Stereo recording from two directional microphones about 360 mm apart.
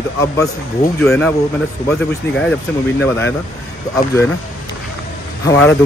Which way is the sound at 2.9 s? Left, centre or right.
Centre.